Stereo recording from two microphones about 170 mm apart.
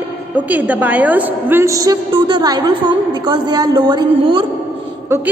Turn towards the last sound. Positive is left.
turn(degrees=-15)  # may be behind; listen again after turning